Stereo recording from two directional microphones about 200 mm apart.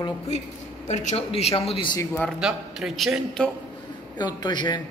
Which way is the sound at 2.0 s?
5° left (ahead or behind).